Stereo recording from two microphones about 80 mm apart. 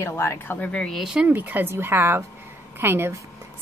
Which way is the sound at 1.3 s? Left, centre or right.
Right.